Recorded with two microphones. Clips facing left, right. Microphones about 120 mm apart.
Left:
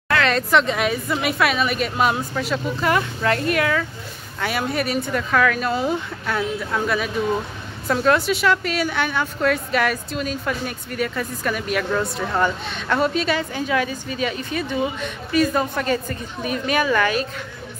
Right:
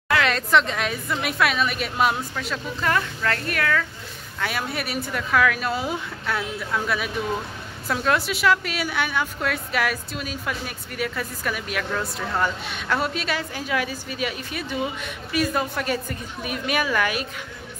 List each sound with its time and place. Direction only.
0.3 s a woman's voice: centre (ahead or behind)
2.3 s speech: 10° left (ahead or behind)
3.0 s speech: 20° left (ahead or behind)
4.4 s a woman's voice: centre (ahead or behind)